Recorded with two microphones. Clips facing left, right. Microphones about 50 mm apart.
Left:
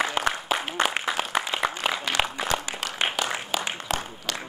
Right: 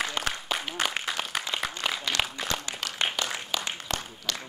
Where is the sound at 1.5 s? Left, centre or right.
Centre.